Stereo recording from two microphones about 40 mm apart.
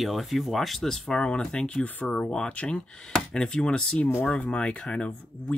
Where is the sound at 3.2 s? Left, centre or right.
Centre.